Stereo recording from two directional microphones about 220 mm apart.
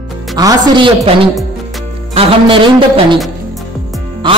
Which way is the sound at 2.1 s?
25° right (ahead or behind).